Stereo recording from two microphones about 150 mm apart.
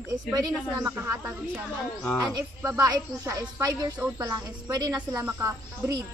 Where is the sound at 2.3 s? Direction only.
25° right (ahead or behind).